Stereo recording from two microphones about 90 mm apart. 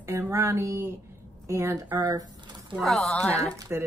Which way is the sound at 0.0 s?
35° right (ahead or behind).